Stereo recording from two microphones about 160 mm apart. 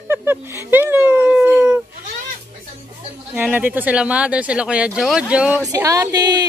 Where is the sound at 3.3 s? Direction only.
10° right (ahead or behind).